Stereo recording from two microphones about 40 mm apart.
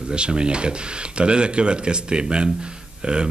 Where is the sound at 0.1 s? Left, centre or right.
Right.